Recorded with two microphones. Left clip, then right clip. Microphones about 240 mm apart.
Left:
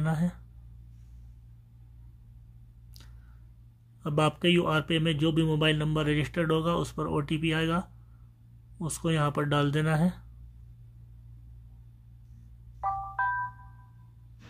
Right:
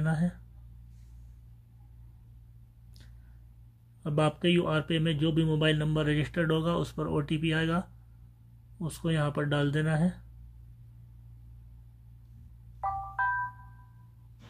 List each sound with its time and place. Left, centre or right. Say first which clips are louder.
0.0 s speech: left 1 dB; centre
4.0 s speech: left 2 dB; centre
12.8 s music: left 1 dB; centre